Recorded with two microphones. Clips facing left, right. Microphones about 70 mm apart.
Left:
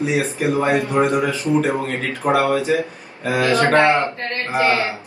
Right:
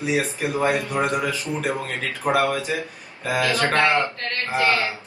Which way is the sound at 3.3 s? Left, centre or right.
Left.